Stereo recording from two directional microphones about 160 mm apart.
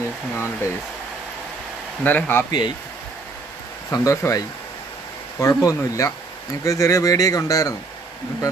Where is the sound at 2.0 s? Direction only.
10° left (ahead or behind).